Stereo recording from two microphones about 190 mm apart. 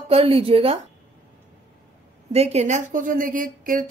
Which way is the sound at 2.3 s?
35° right (ahead or behind).